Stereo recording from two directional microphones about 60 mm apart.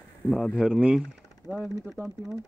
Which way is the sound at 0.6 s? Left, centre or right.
Centre.